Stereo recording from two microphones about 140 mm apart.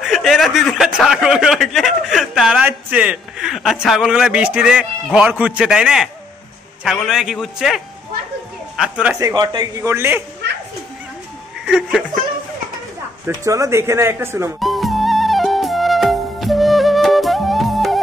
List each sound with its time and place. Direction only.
0.0 s a sound: centre (ahead or behind)
6.8 s a man's voice: centre (ahead or behind)
9.2 s a man's voice: 30° right (ahead or behind)
9.8 s speech: 20° right (ahead or behind)
11.6 s speech: 5° right (ahead or behind)
13.3 s speech: 20° right (ahead or behind)
14.6 s music: centre (ahead or behind)